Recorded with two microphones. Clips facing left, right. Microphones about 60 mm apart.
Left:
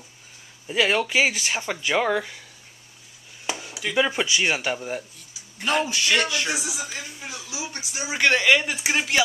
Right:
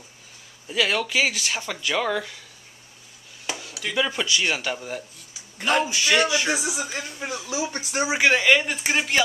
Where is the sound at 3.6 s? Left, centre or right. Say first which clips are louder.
Left 1 dB; centre.